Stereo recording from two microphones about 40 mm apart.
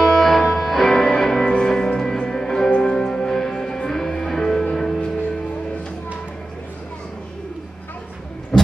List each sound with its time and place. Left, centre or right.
0.0 s music: centre
1.4 s music: left; by 5.0 s centre